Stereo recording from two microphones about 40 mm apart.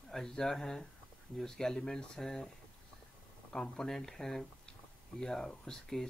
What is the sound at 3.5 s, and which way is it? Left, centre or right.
Speech, centre.